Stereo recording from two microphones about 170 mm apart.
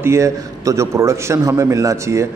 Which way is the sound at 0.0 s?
15° right (ahead or behind).